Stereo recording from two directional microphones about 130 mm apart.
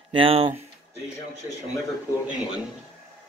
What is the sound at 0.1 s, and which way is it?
Speech, 45° right (ahead or behind).